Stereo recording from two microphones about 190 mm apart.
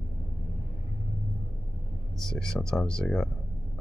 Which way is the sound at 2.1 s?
Centre (ahead or behind).